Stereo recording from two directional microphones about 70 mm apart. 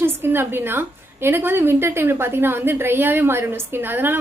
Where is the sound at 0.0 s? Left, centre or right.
Right.